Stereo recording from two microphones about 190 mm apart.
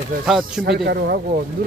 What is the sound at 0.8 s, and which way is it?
Speech, 55° right (ahead or behind).